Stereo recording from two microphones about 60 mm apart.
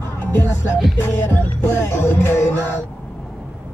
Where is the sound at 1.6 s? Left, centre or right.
Left.